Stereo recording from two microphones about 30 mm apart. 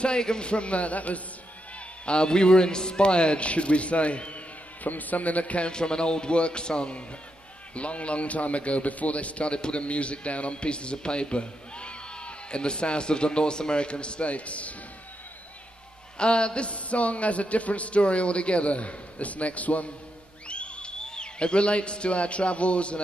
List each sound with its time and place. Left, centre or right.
0.0 s a man's voice: left
2.0 s a man's voice: left
4.8 s a man's voice: left
5.7 s a man's voice: left
7.7 s a man's voice: left
16.2 s a man's voice: left
20.4 s music: left
21.0 s a man's voice: left